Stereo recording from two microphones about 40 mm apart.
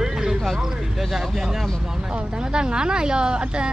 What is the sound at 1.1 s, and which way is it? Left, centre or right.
Speech, centre.